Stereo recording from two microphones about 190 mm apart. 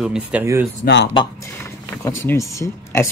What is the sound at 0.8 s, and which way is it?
Speech, 65° left (ahead or behind).